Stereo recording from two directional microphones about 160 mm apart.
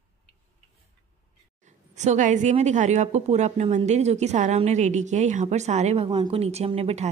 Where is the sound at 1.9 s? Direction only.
50° right (ahead or behind).